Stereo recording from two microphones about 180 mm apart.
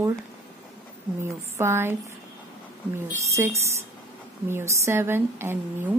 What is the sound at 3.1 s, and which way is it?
A woman's voice, 15° right (ahead or behind).